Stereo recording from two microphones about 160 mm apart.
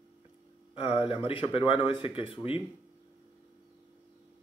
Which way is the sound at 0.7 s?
35° left (ahead or behind).